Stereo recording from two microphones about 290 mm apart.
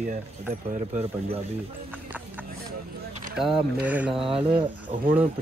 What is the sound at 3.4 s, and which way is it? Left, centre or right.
Speech, centre.